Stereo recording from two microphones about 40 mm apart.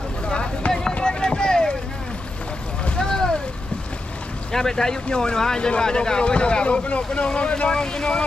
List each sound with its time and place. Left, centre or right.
0.3 s a sound: left
3.0 s boat: centre
4.5 s speech: centre